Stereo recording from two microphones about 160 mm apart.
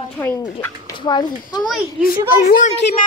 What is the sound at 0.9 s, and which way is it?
Speech, 25° left (ahead or behind).